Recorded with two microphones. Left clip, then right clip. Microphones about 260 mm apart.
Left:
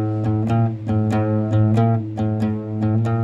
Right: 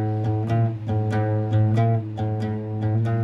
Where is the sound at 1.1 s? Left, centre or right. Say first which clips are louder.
Left 4 dB; left.